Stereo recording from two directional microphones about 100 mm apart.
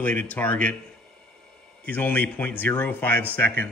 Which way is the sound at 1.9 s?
15° left (ahead or behind).